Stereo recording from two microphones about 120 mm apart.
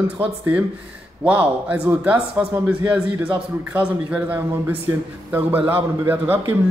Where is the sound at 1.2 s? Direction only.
10° right (ahead or behind).